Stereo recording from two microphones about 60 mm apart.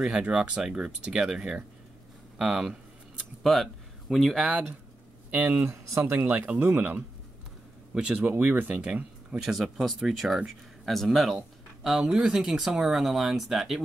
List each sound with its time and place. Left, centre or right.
0.0 s speech: centre
4.1 s speech: centre
5.3 s speech: right
5.7 s speech: right
6.0 s speech: right
7.9 s speech: centre
8.3 s speech: right
9.4 s speech: centre